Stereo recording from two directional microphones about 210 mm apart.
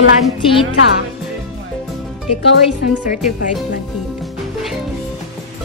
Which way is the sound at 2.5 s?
50° left (ahead or behind).